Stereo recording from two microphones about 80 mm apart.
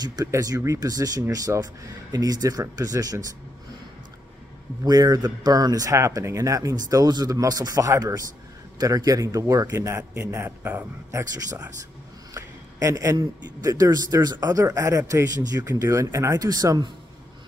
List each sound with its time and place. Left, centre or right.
0.0 s a man's voice: right
4.8 s a man's voice: right
10.6 s a man's voice: centre
12.4 s a man's voice: right
16.4 s a man's voice: right